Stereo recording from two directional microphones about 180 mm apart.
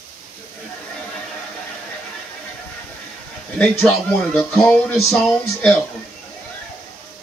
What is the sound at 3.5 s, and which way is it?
Speech, 5° left (ahead or behind).